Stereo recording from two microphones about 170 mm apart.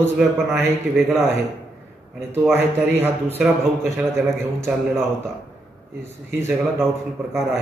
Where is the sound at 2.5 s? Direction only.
15° right (ahead or behind).